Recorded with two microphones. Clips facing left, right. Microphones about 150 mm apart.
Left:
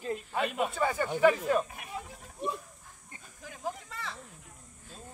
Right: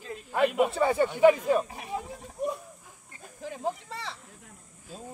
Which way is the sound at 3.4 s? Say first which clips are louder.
Right 6 dB; 30° right (ahead or behind).